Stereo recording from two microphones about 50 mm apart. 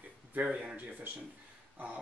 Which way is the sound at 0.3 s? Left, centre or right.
Right.